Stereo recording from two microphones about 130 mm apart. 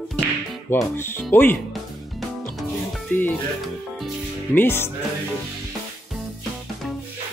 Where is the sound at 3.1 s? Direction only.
15° left (ahead or behind).